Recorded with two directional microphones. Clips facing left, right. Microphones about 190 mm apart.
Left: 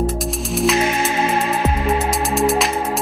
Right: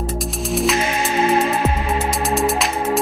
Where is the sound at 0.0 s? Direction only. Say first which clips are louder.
Left 3 dB; centre (ahead or behind).